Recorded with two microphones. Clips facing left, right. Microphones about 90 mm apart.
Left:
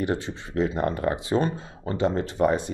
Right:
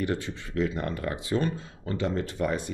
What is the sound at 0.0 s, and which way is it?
Speech, 25° left (ahead or behind).